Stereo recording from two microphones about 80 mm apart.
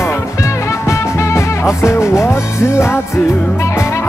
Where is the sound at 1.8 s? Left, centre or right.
Left.